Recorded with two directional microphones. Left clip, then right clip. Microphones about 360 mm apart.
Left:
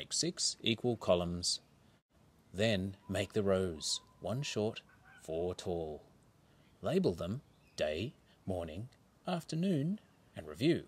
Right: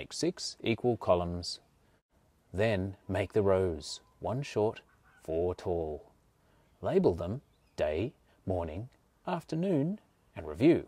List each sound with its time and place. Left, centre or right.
0.0 s speech: right
2.5 s speech: right
6.8 s speech: right